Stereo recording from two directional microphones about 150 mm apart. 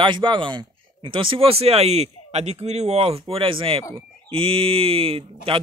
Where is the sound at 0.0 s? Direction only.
30° right (ahead or behind).